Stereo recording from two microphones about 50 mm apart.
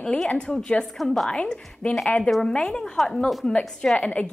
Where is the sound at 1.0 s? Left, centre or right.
Centre.